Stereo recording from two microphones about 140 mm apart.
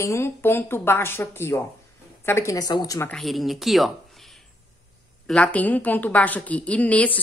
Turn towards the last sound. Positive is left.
turn(degrees=10)  # may be behind; listen again after turning